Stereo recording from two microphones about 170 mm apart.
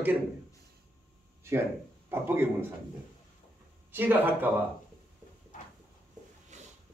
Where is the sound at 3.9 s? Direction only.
10° right (ahead or behind).